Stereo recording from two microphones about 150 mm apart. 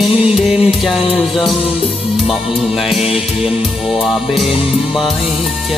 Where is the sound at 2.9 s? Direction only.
40° left (ahead or behind).